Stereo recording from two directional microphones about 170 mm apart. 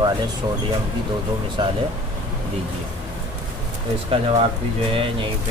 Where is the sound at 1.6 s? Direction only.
30° right (ahead or behind).